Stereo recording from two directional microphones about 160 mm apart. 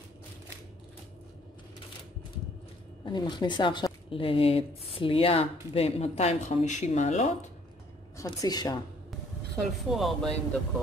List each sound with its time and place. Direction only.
3.1 s speech: 30° left (ahead or behind); by 7.3 s 45° left (ahead or behind)
8.2 s speech: 25° left (ahead or behind)
9.6 s speech: centre (ahead or behind)